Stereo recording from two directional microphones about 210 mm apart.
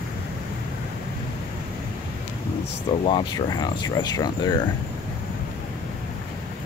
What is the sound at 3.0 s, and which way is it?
Speech, 20° left (ahead or behind).